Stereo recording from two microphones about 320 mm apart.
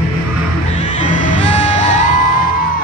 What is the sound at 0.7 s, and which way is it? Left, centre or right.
Music, left.